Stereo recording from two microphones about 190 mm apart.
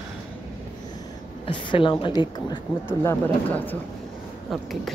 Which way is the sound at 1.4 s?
25° left (ahead or behind).